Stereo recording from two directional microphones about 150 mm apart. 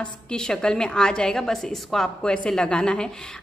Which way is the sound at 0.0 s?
5° left (ahead or behind).